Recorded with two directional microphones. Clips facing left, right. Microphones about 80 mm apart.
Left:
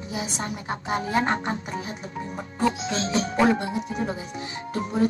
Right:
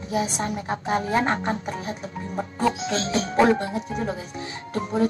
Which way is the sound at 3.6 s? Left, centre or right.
Centre.